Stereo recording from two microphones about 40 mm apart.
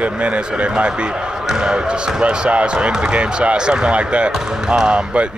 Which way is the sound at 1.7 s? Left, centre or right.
Right.